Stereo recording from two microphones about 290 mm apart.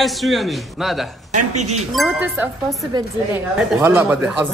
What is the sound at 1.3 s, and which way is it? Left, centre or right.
Speech, right.